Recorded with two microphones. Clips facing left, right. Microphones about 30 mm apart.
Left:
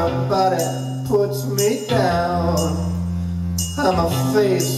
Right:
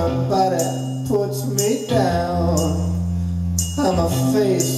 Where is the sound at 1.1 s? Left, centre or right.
Centre.